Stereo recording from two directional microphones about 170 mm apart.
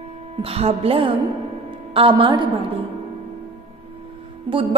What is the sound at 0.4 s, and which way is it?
A woman's voice, 35° right (ahead or behind).